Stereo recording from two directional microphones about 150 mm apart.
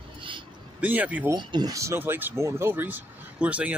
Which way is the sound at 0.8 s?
10° right (ahead or behind).